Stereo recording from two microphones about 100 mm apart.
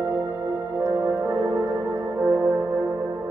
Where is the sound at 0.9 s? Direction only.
20° right (ahead or behind).